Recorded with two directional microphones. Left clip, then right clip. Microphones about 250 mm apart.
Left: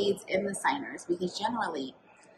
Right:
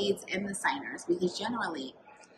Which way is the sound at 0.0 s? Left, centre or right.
Centre.